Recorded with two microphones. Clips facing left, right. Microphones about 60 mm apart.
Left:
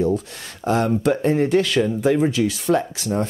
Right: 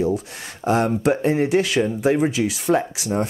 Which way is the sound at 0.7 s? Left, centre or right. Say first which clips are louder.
Even; right.